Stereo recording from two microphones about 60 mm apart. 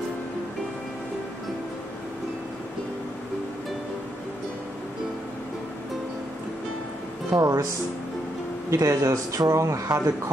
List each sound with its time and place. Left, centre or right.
7.3 s speech: right
8.6 s speech: right